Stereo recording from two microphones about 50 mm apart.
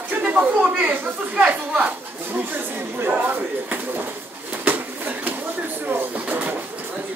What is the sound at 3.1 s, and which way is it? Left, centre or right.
Speech, right.